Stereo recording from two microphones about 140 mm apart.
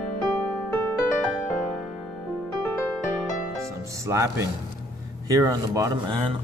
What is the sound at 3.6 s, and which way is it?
Music, 20° right (ahead or behind).